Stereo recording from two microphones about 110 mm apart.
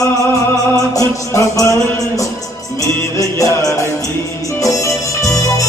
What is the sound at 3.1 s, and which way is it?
Music, 30° left (ahead or behind).